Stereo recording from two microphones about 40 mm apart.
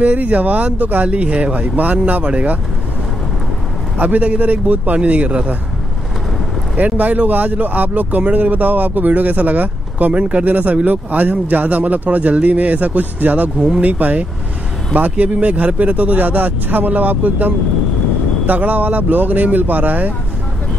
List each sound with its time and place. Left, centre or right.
0.0 s speech: right
0.7 s speech: right
1.0 s speech: right
4.0 s speech: right
6.8 s speech: right
18.5 s speech: right